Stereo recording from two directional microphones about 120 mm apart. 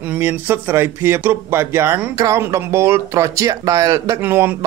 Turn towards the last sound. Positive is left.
turn(degrees=-20)  # may be behind; listen again after turning